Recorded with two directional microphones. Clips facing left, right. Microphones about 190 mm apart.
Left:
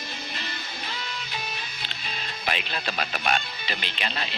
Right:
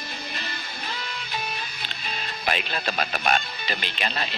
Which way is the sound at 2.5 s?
45° right (ahead or behind).